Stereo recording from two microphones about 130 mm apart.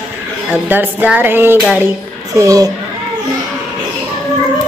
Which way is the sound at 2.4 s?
25° right (ahead or behind).